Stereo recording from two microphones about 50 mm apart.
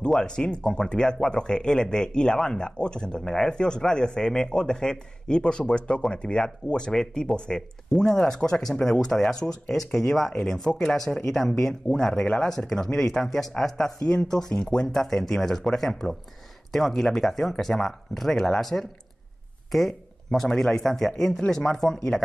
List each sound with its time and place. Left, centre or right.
0.2 s speech: centre